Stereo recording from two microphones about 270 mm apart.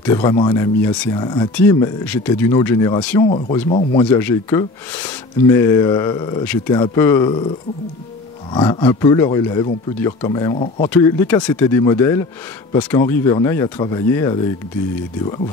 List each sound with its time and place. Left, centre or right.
0.0 s speech: centre
3.3 s speech: left
8.5 s speech: centre